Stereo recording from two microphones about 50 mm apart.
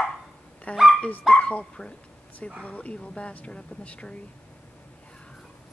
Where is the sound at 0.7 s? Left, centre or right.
Left.